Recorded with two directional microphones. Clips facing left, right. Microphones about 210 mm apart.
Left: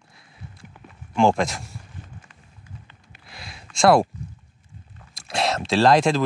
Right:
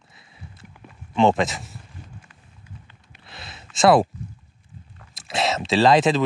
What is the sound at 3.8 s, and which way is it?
Speech, centre (ahead or behind).